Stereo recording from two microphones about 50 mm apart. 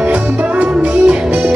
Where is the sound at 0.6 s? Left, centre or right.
Right.